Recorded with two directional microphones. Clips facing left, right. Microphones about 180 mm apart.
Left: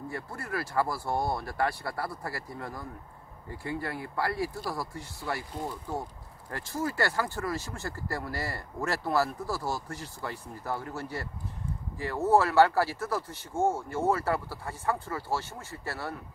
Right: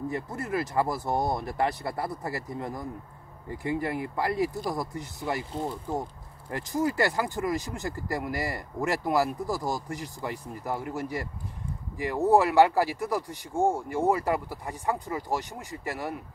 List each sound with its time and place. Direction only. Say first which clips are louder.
0.1 s speech: right 5 dB; 20° right (ahead or behind)